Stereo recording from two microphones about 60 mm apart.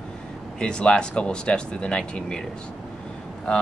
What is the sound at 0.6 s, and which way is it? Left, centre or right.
Speech, centre.